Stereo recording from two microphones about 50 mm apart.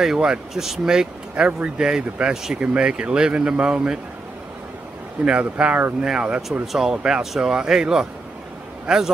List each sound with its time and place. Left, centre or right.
0.0 s speech: centre
1.3 s speech: right
5.2 s speech: centre
6.6 s speech: centre
6.9 s a man's voice: centre